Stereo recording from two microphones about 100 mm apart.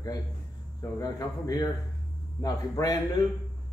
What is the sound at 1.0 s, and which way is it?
Speech, 35° left (ahead or behind).